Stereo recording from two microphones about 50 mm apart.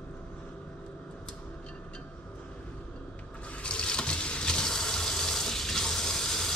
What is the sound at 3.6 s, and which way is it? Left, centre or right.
Water, centre.